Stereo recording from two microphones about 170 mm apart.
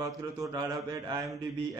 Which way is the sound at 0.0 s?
20° right (ahead or behind).